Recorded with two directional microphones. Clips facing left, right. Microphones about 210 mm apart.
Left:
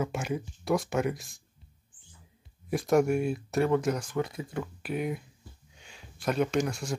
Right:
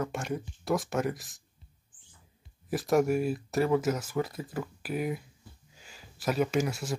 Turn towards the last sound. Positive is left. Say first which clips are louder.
# even
turn(degrees=-5)  # may be behind; listen again after turning